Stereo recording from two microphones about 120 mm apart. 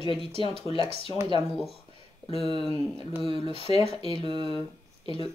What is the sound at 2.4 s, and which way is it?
Speech, 50° left (ahead or behind).